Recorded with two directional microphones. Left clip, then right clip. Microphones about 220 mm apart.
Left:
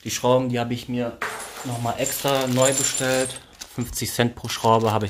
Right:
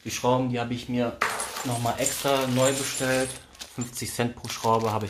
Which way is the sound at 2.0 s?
45° left (ahead or behind).